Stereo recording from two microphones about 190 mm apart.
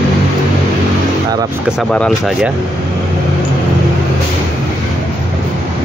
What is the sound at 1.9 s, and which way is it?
Speech, centre (ahead or behind).